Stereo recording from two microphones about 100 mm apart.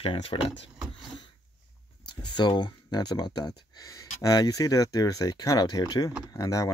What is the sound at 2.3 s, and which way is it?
Speech, 50° left (ahead or behind).